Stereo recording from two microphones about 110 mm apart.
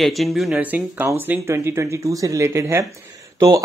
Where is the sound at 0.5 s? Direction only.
15° right (ahead or behind).